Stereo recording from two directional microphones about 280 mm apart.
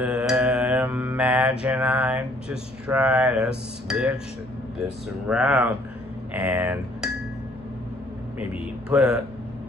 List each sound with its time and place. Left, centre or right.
0.0 s mantra: centre
5.3 s speech: centre
8.9 s speech: centre